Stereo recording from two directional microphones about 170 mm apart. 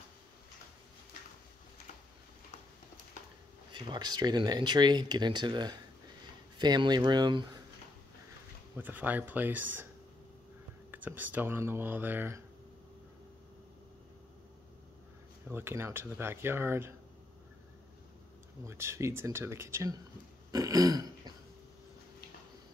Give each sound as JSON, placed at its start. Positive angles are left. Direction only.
{"t": 3.7, "sound": "speech", "side_deg": -25}
{"t": 8.7, "sound": "speech", "side_deg": -10}
{"t": 10.9, "sound": "speech", "side_deg": -10}
{"t": 15.5, "sound": "speech", "side_deg": -15}
{"t": 18.6, "sound": "speech", "side_deg": -15}
{"t": 20.5, "sound": "burping", "side_deg": -20}